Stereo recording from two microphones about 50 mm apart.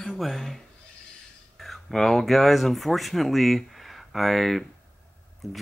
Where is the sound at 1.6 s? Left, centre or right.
Centre.